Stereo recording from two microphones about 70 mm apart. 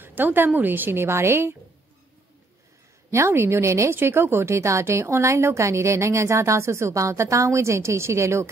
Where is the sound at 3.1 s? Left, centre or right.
Right.